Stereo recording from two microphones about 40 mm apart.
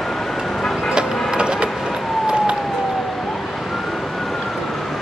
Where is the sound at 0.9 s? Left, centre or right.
Right.